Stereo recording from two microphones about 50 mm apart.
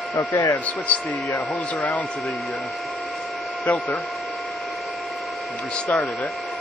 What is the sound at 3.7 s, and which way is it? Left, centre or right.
Speech, left.